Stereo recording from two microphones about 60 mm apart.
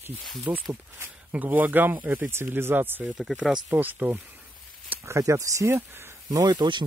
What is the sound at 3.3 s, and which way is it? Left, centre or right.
Speech, centre.